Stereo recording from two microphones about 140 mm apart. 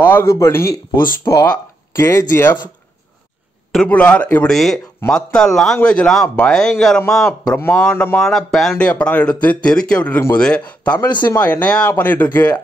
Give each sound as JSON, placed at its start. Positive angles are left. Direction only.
{"t": 0.0, "sound": "speech", "side_deg": 15}
{"t": 3.7, "sound": "speech", "side_deg": 10}
{"t": 7.4, "sound": "speech", "side_deg": 15}